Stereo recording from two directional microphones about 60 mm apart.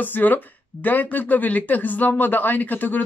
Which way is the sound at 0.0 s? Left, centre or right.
Left.